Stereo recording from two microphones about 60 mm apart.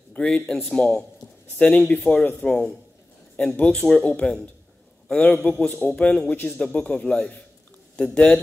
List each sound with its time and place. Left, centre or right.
0.1 s a man's voice: centre
6.6 s speech: centre